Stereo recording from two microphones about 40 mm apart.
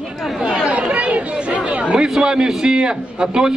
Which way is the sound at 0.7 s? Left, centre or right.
Right.